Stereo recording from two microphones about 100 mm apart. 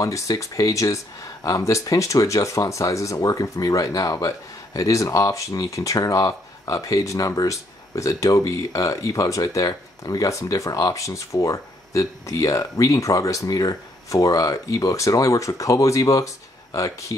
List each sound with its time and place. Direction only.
0.0 s speech: 30° left (ahead or behind)